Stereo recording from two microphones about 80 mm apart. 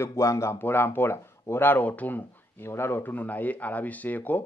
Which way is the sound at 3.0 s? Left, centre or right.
Left.